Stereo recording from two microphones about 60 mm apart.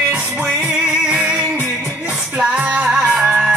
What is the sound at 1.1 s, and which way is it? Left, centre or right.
Music, right.